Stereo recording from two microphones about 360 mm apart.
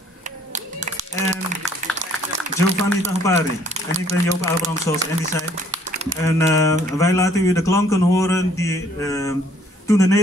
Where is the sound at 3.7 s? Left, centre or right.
Centre.